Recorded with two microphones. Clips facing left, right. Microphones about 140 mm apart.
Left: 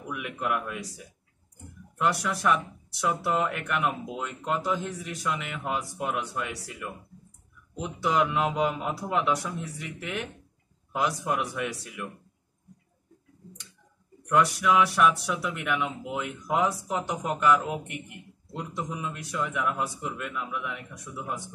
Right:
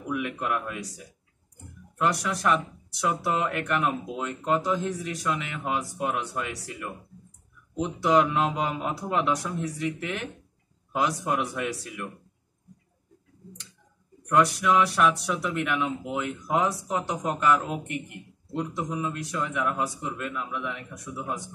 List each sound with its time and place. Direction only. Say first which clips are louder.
0.1 s speech: right 2 dB; 5° left (ahead or behind)
2.0 s speech: even; centre (ahead or behind)
7.8 s speech: right 4 dB; 5° left (ahead or behind)
14.3 s speech: right 1 dB; centre (ahead or behind)